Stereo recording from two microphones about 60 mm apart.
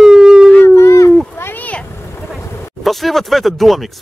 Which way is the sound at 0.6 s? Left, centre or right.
Left.